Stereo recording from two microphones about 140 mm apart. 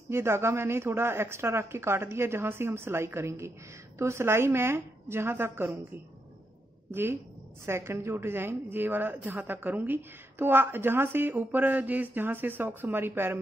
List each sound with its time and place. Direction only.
0.1 s a woman's voice: 20° right (ahead or behind)
6.9 s a woman's voice: 15° right (ahead or behind)